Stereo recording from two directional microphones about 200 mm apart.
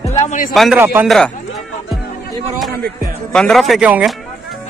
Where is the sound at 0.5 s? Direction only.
Centre (ahead or behind).